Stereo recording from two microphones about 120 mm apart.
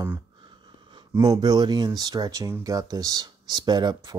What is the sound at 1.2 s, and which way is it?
Speech, 35° right (ahead or behind).